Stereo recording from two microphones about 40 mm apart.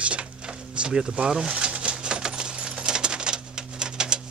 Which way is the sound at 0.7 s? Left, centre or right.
Right.